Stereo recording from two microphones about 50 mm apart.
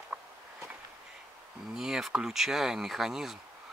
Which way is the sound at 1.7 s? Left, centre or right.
Centre.